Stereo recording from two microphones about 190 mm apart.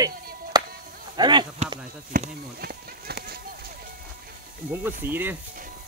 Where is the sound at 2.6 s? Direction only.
55° right (ahead or behind).